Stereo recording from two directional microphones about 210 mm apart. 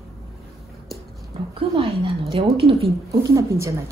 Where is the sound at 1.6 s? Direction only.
25° right (ahead or behind).